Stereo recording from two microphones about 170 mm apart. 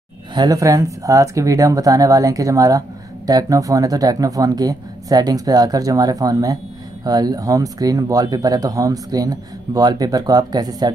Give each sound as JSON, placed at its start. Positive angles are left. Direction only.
{"t": 0.3, "sound": "speech", "side_deg": -25}